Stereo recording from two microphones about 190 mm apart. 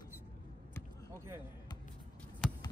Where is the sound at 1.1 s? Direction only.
15° right (ahead or behind).